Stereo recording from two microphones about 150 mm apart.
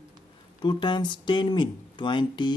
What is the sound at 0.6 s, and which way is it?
Speech, 30° left (ahead or behind).